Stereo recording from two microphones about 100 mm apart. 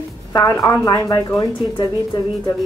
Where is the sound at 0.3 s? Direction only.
35° left (ahead or behind).